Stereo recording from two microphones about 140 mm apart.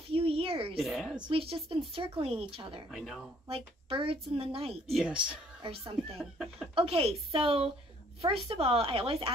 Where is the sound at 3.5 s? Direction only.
40° right (ahead or behind).